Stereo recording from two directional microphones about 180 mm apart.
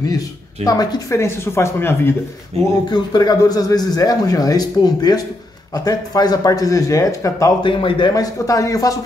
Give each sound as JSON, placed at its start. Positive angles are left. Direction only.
{"t": 0.7, "sound": "speech", "side_deg": 20}
{"t": 2.9, "sound": "speech", "side_deg": 20}